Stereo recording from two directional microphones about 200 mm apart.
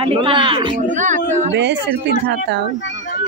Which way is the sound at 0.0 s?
25° right (ahead or behind).